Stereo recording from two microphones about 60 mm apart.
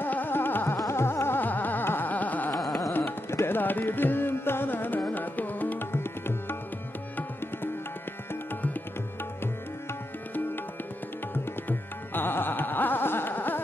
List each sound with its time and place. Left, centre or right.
0.0 s music: left
0.7 s carnatic music: left
2.6 s music: centre
2.9 s tabla: left
5.0 s music: left
11.6 s music: left